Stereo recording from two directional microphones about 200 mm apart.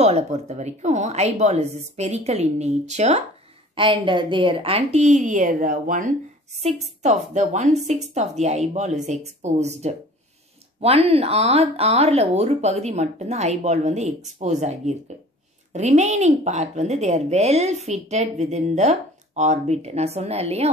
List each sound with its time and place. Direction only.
0.0 s a woman's voice: 35° right (ahead or behind)